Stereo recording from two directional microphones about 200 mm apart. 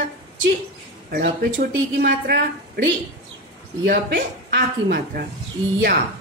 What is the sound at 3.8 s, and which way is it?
Speech, 60° right (ahead or behind).